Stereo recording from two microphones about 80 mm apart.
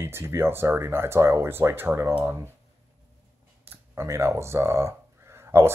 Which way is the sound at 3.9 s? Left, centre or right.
Right.